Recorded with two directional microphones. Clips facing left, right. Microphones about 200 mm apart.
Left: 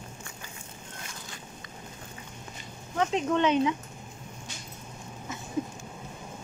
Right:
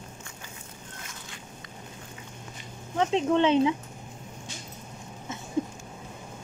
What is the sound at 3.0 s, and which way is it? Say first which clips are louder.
Speech: right 3 dB; 25° right (ahead or behind).